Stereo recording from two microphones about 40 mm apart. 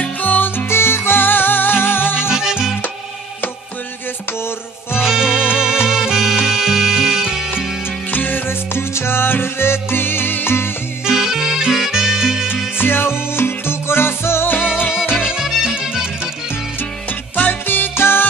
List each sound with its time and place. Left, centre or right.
0.2 s music: left
0.7 s music: left
2.3 s music: centre
5.0 s music: centre
8.1 s music: left
8.5 s music: left
11.1 s music: centre
12.7 s music: left
14.5 s music: left
15.3 s music: centre
17.4 s music: left